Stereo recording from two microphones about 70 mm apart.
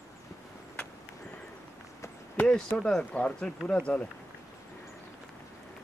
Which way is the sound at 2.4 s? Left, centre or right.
Centre.